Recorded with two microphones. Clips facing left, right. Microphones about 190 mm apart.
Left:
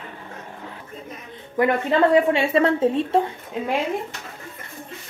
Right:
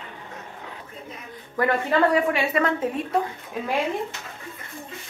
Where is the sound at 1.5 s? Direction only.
20° left (ahead or behind).